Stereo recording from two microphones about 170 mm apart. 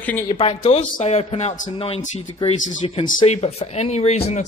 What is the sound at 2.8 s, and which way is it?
Speech, 30° left (ahead or behind).